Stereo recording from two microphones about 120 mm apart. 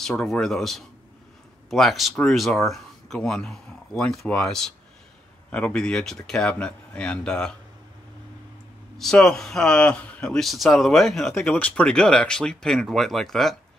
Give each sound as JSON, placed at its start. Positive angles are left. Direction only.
{"t": 0.0, "sound": "speech", "side_deg": 5}
{"t": 8.9, "sound": "speech", "side_deg": 5}
{"t": 11.3, "sound": "speech", "side_deg": 15}